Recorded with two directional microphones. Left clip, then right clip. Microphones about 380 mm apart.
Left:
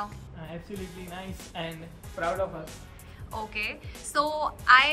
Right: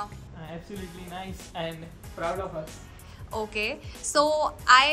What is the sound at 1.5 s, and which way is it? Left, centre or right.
A woman's voice, centre.